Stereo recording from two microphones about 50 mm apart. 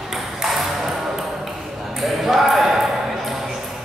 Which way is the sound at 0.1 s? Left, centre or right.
Centre.